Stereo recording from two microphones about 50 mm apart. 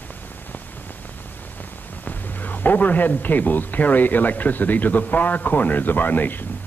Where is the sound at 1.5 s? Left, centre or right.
Left.